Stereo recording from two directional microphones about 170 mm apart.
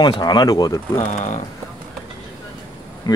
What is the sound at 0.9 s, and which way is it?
Speech, 45° left (ahead or behind).